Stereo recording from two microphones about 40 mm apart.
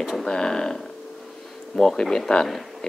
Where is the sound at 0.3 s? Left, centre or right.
Centre.